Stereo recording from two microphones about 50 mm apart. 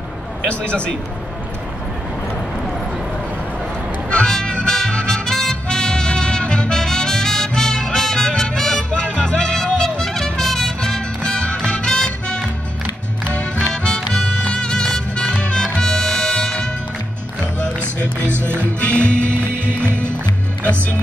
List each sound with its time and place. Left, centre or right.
0.7 s a man's voice: left
4.3 s music: centre
13.6 s music: centre
18.3 s music: right
18.6 s music: left